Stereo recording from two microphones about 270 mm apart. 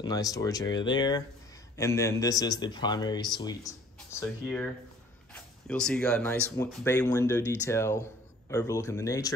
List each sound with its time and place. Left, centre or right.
0.0 s speech: centre